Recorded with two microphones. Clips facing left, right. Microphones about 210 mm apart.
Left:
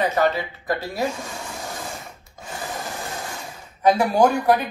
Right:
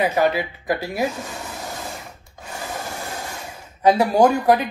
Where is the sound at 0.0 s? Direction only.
10° right (ahead or behind).